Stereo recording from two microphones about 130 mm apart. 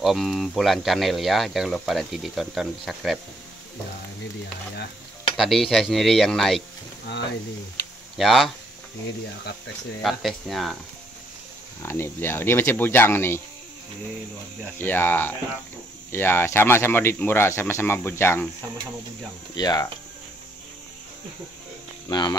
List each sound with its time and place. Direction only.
0.0 s speech: centre (ahead or behind)
5.3 s speech: centre (ahead or behind)
8.2 s speech: centre (ahead or behind)
10.0 s speech: centre (ahead or behind)
11.8 s speech: 20° left (ahead or behind)
14.8 s speech: 15° left (ahead or behind)
19.5 s speech: 30° left (ahead or behind)
22.1 s speech: 35° left (ahead or behind)